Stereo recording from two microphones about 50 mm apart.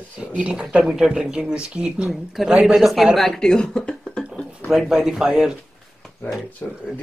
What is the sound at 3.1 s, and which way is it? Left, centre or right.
Speech, centre.